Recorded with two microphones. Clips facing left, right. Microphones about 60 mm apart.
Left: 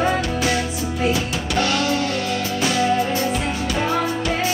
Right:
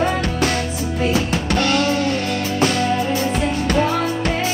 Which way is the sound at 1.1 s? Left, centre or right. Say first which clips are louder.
Right 3 dB; right.